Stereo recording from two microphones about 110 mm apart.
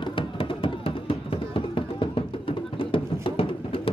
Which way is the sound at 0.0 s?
50° left (ahead or behind).